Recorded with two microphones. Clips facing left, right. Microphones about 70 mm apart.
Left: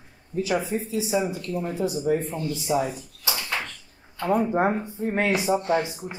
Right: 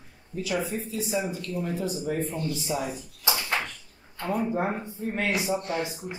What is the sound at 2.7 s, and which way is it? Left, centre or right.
Speech, left.